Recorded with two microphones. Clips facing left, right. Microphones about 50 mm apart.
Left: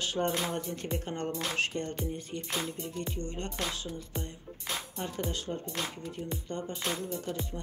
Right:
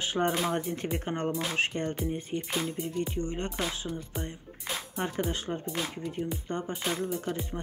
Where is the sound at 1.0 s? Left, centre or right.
Right.